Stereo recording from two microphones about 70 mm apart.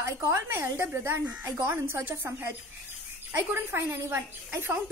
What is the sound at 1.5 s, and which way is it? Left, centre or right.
Speech, right.